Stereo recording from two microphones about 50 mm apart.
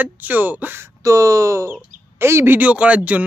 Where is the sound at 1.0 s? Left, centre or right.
Right.